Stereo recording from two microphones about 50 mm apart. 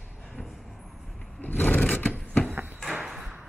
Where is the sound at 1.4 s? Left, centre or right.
Left.